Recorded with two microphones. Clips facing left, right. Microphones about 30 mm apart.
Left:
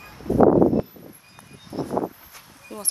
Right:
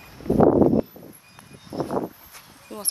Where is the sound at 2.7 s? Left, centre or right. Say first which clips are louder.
Even; centre.